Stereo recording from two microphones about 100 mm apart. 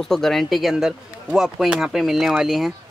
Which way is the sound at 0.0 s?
5° left (ahead or behind).